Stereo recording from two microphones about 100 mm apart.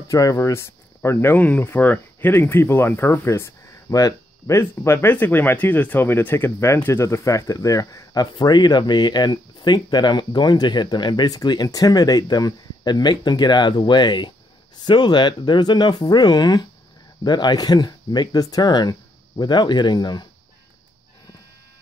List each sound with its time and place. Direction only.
0.1 s speech: 35° left (ahead or behind)